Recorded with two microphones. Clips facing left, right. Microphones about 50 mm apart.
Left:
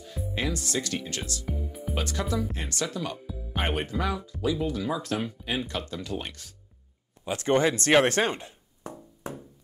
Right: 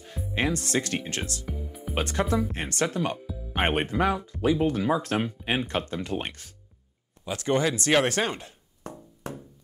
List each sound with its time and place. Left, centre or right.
0.0 s speech: right
7.2 s speech: left
8.2 s a sound: left
9.2 s music: right